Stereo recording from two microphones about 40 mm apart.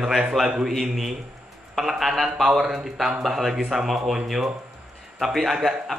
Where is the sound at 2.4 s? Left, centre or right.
Centre.